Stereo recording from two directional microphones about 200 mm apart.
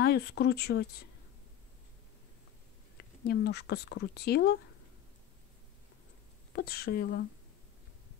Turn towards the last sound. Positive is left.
turn(degrees=55)  # may be behind; listen again after turning